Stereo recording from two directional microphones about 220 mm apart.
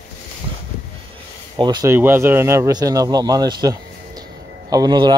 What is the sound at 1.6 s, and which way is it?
Speech, 20° right (ahead or behind).